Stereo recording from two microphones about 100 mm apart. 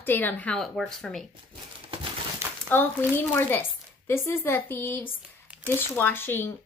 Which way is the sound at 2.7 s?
20° left (ahead or behind).